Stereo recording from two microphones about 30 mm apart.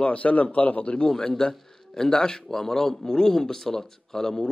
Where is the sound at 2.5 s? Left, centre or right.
Centre.